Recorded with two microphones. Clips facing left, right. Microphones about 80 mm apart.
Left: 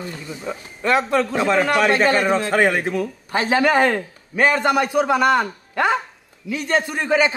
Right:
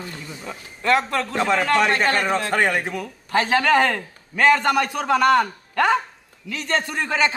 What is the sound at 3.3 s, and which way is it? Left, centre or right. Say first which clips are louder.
A man's voice: even; centre.